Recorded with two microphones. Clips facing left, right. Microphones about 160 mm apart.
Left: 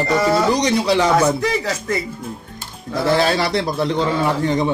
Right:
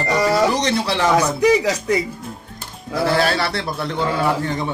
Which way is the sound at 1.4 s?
15° right (ahead or behind).